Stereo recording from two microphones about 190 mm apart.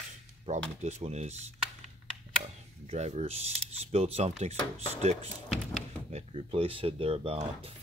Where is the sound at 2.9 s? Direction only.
35° right (ahead or behind).